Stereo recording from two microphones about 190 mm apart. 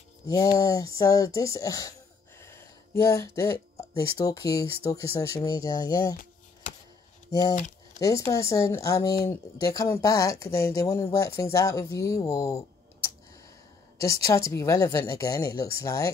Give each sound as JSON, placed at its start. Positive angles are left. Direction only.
{"t": 0.3, "sound": "speech", "side_deg": 15}
{"t": 7.2, "sound": "speech", "side_deg": 20}